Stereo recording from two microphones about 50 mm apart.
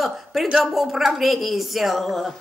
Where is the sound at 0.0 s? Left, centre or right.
Centre.